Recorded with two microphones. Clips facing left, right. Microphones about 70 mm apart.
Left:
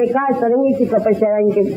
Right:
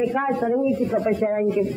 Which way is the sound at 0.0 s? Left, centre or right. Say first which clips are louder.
Left 7 dB; centre.